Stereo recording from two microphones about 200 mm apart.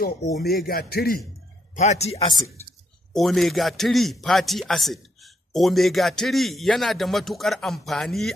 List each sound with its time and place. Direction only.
0.0 s speech: 50° left (ahead or behind)
1.8 s speech: 35° left (ahead or behind)
3.1 s a man's voice: centre (ahead or behind)